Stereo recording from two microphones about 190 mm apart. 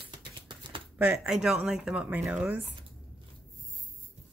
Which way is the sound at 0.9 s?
5° right (ahead or behind).